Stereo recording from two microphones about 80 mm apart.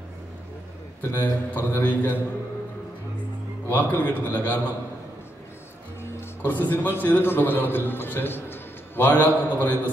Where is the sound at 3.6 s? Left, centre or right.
Left.